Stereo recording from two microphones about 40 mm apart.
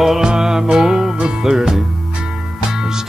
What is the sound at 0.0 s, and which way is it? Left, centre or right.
Music, centre.